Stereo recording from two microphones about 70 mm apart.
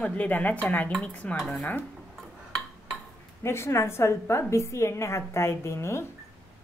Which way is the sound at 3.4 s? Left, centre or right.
Left.